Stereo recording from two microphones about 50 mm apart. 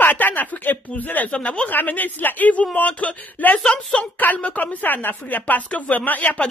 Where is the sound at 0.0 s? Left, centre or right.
Left.